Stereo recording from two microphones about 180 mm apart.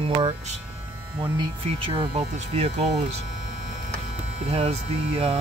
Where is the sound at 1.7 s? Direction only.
35° right (ahead or behind).